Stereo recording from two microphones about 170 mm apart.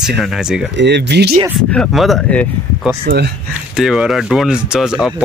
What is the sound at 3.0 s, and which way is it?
Speech, 75° right (ahead or behind).